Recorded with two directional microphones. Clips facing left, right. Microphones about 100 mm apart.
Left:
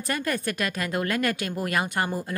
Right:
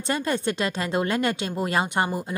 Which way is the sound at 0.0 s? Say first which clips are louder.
Right 3 dB; 25° right (ahead or behind).